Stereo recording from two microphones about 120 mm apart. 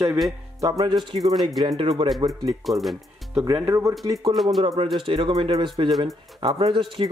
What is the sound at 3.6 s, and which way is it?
Speech, 25° right (ahead or behind).